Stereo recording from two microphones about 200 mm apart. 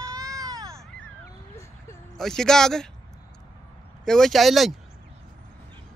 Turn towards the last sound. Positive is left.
turn(degrees=0)  # may be behind; listen again after turning